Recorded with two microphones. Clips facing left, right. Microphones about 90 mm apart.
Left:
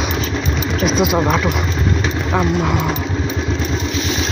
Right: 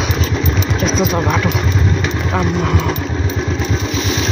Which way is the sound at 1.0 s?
5° left (ahead or behind).